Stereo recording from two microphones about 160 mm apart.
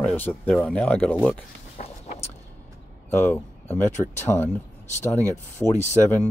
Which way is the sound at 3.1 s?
15° left (ahead or behind).